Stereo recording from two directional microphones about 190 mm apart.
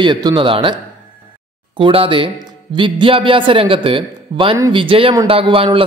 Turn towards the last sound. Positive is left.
turn(degrees=-30)  # may be behind; listen again after turning